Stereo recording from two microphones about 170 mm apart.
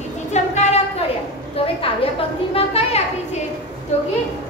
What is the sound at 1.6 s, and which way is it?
A woman's voice, 35° left (ahead or behind).